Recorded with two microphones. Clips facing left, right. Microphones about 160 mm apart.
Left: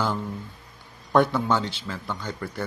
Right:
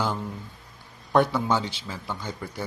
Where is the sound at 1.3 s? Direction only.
10° right (ahead or behind).